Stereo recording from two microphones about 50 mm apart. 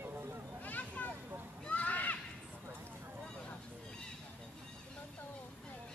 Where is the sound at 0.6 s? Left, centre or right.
Left.